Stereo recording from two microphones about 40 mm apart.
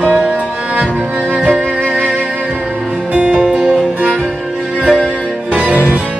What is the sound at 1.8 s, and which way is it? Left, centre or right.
Music, right.